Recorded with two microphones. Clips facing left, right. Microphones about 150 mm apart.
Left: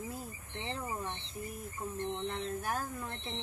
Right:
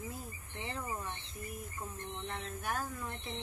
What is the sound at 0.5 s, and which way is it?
Cricket, 30° left (ahead or behind).